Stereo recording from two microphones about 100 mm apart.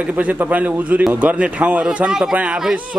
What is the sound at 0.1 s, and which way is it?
A man's voice, 15° right (ahead or behind).